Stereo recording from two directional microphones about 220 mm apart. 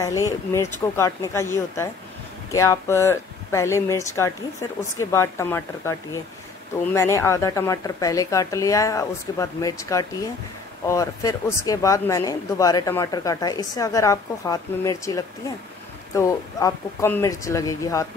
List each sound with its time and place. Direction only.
0.0 s speech: 15° left (ahead or behind)